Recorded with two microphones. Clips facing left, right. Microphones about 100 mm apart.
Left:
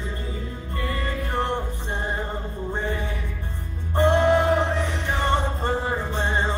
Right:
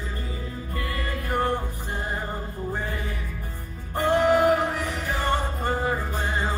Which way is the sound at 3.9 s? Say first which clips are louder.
Left 2 dB; 25° left (ahead or behind).